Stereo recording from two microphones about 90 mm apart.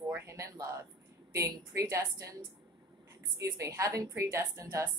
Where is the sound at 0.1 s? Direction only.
35° right (ahead or behind).